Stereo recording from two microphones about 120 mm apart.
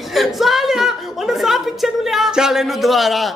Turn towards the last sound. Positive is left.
turn(degrees=0)  # may be behind; listen again after turning